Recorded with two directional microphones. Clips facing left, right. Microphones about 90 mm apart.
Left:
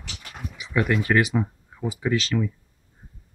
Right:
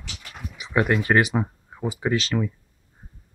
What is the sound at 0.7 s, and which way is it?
Speech, 35° right (ahead or behind).